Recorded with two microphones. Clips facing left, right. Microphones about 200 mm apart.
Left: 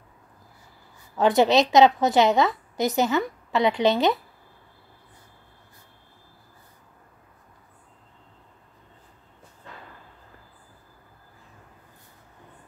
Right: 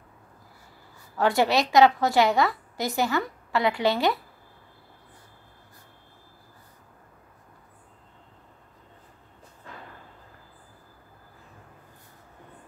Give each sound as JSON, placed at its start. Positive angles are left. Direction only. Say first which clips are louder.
{"t": 1.1, "sound": "a woman's voice", "louder": "left 4 dB", "side_deg": 20}